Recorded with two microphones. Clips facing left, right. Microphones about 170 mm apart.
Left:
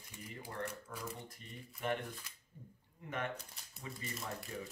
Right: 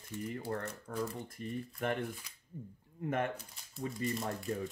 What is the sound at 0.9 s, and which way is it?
Speech, 55° right (ahead or behind).